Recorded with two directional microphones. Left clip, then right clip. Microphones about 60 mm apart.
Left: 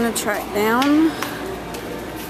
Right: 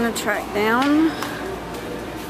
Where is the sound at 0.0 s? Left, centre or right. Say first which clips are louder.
Left 1 dB; left.